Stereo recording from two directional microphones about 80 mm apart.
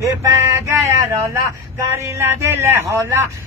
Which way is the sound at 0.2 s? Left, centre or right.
Right.